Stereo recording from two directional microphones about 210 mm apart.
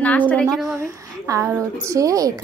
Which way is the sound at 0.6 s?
15° right (ahead or behind).